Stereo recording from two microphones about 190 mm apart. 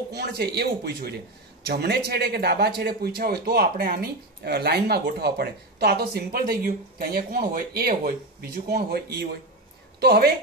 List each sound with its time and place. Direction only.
0.1 s a woman's voice: 60° right (ahead or behind)